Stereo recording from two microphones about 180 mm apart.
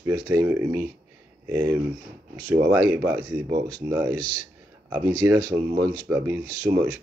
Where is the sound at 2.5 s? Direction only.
20° right (ahead or behind).